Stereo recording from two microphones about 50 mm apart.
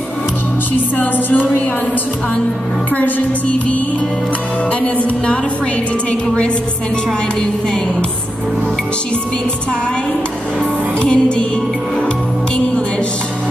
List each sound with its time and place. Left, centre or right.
0.9 s music: left
2.9 s music: left
11.0 s music: centre